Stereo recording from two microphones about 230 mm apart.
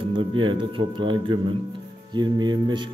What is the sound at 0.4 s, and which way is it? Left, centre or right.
Speech, right.